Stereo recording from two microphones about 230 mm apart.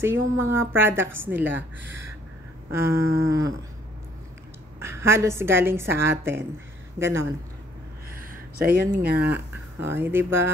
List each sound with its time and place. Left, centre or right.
0.0 s a woman's voice: centre
2.7 s a woman's voice: centre
4.7 s a woman's voice: centre
8.2 s a sound: right
9.2 s a woman's voice: centre